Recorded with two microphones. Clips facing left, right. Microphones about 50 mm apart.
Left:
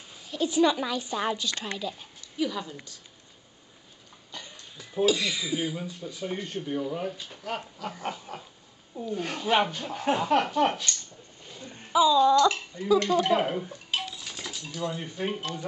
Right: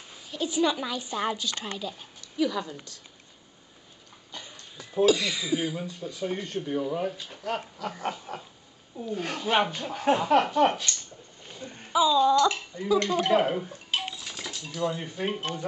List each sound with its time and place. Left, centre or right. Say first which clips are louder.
0.3 s speech: left 3 dB; centre
0.6 s a woman's voice: left 2 dB; centre
1.1 s speech: right 1 dB; centre
2.3 s a woman's voice: right 3 dB; centre
4.4 s a sound: even; centre
5.0 s speech: right 2 dB; right
5.5 s a woman's voice: right 5 dB; centre
5.8 s speech: right 2 dB; centre
12.7 s speech: left 1 dB; right
13.2 s speech: right 1 dB; centre